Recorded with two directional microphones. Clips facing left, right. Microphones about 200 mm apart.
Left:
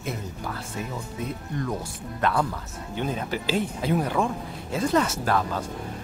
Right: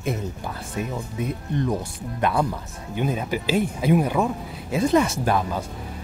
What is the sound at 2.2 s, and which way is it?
Speech, 15° right (ahead or behind).